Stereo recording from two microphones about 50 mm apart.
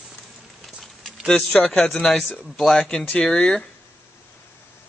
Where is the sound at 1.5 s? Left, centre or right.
Centre.